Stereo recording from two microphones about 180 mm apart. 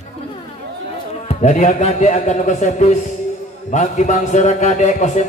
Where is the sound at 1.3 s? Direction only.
40° left (ahead or behind).